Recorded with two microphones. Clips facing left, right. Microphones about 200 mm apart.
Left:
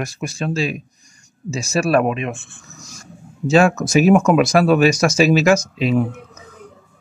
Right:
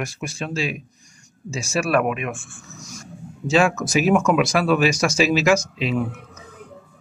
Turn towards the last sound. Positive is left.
turn(degrees=40)  # may be behind; listen again after turning